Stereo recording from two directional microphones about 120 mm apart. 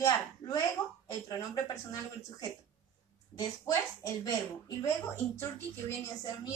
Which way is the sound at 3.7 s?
30° left (ahead or behind).